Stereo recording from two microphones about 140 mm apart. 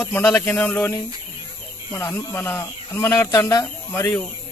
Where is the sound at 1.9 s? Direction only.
20° left (ahead or behind).